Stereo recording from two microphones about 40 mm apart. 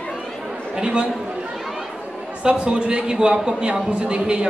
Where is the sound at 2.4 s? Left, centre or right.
Right.